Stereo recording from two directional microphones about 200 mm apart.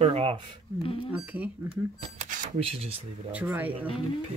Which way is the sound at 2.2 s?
40° right (ahead or behind).